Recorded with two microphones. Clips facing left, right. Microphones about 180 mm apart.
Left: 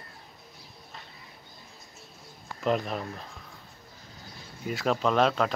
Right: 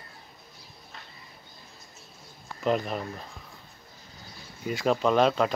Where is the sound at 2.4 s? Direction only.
Centre (ahead or behind).